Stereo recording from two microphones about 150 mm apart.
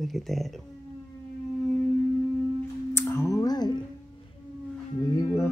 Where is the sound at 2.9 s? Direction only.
20° left (ahead or behind).